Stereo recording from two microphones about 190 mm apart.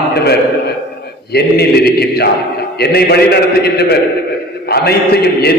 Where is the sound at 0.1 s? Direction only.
55° left (ahead or behind).